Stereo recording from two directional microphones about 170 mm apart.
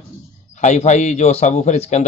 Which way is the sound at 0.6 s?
45° left (ahead or behind).